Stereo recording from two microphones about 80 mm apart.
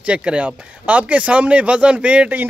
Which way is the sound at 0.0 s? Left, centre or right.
Centre.